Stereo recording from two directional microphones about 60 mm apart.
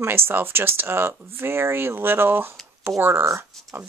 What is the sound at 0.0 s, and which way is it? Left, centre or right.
Speech, right.